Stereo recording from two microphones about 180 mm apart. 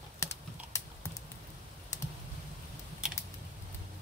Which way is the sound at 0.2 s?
15° left (ahead or behind).